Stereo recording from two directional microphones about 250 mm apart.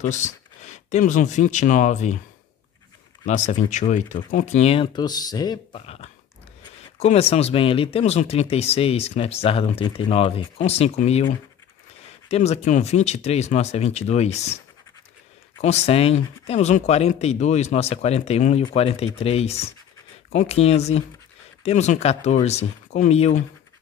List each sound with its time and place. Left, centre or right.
0.8 s speech: left
3.3 s speech: left
12.3 s speech: left
15.6 s speech: left